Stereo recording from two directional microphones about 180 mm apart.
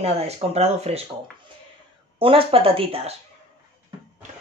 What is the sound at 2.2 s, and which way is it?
Speech, 30° right (ahead or behind).